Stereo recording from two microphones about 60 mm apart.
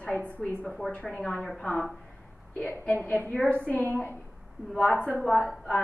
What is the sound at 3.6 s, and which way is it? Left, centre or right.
Speech, left.